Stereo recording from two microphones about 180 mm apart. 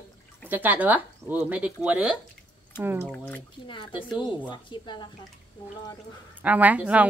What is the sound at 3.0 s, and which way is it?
Speech, 10° left (ahead or behind).